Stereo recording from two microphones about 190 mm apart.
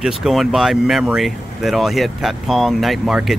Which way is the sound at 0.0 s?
Centre (ahead or behind).